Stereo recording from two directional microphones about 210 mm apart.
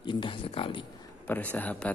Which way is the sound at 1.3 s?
10° left (ahead or behind).